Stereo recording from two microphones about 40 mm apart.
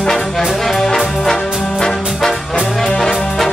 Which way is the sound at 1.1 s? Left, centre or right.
Centre.